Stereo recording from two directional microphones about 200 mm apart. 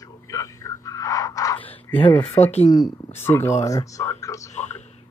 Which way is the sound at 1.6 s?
25° left (ahead or behind).